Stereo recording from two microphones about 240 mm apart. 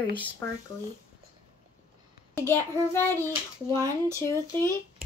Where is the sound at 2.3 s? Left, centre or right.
Centre.